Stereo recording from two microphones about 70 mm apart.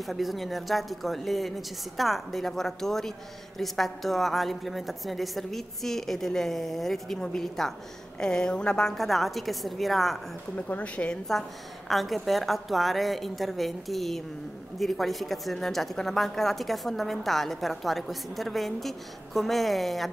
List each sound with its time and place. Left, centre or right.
0.0 s a woman's voice: centre
10.5 s speech: centre
11.9 s a woman's voice: centre